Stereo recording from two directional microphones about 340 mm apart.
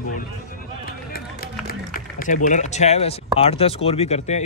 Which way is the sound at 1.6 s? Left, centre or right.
Left.